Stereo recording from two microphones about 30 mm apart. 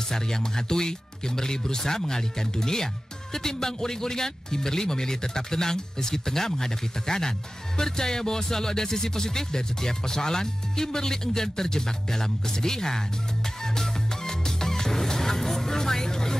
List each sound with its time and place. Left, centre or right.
0.1 s speech: centre
13.6 s music: centre